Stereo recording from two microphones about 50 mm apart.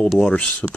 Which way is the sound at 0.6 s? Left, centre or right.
Left.